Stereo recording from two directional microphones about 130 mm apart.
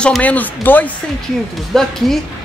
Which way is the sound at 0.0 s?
10° left (ahead or behind).